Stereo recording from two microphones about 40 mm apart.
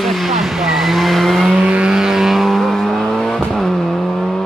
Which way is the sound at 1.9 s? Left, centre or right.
Centre.